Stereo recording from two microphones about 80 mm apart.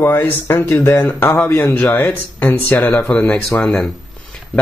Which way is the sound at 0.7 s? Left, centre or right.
Left.